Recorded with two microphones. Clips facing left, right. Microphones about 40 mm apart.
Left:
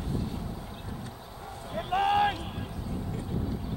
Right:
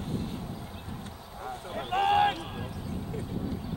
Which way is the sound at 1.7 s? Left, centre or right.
Right.